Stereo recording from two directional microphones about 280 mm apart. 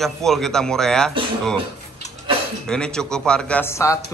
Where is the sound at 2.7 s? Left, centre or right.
Centre.